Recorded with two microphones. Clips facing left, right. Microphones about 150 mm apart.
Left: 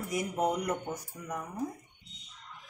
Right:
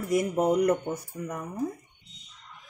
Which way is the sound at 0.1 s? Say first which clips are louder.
Right 7 dB; 60° right (ahead or behind).